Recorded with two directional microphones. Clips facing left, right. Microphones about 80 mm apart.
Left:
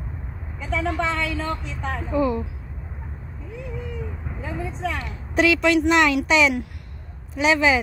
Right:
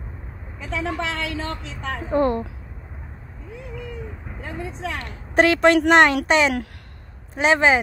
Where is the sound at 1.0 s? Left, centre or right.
Right.